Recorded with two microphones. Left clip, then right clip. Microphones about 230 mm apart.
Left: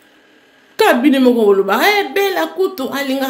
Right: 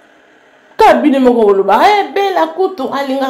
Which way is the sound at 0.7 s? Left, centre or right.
Centre.